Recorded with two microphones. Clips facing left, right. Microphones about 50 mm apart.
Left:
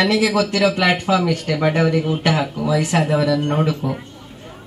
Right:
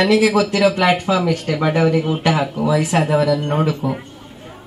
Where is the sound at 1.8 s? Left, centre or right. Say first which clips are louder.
Right 1 dB; right.